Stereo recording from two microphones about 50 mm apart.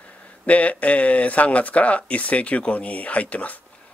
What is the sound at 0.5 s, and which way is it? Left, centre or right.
Speech, left.